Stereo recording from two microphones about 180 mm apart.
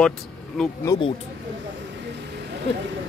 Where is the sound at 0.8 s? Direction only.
20° left (ahead or behind).